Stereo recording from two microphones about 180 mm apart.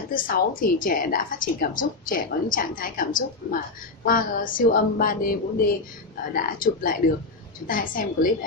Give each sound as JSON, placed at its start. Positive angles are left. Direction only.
{"t": 0.1, "sound": "a woman's voice", "side_deg": 50}